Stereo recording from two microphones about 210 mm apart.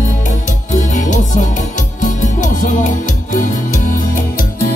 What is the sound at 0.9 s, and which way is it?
Music, 35° left (ahead or behind).